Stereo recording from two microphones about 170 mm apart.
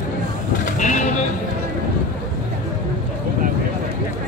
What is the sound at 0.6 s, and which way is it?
Sheep, 45° left (ahead or behind).